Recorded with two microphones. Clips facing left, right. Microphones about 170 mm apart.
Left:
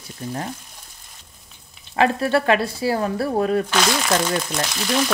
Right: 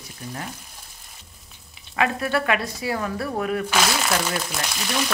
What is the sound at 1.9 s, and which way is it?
Speech, 30° left (ahead or behind).